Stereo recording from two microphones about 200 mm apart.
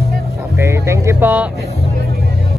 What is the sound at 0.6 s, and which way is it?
Speech, 15° right (ahead or behind).